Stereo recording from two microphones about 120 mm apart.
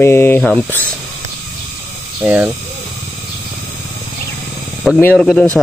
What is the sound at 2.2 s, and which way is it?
Speech, 10° right (ahead or behind).